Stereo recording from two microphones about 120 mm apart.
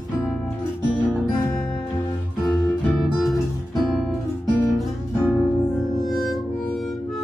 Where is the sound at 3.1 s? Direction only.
Centre (ahead or behind).